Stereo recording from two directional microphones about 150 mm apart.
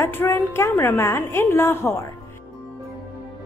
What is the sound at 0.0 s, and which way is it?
A woman's voice, 15° left (ahead or behind).